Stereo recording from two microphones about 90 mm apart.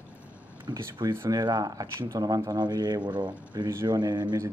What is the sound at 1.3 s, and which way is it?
Speech, 45° right (ahead or behind).